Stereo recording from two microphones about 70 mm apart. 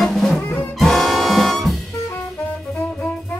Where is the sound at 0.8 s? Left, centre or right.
Centre.